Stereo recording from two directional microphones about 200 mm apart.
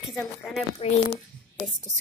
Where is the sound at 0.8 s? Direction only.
30° left (ahead or behind).